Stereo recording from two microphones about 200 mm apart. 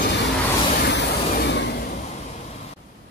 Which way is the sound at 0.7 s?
55° left (ahead or behind).